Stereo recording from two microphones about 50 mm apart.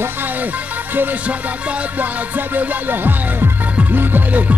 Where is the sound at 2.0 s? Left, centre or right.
Right.